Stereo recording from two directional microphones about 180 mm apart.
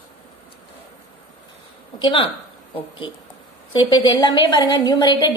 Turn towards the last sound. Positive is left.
turn(degrees=25)  # may be behind; listen again after turning